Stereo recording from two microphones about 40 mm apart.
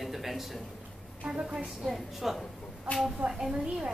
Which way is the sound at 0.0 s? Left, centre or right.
Centre.